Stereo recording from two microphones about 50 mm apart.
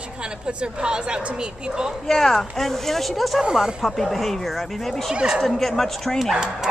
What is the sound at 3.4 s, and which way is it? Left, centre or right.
Speech, centre.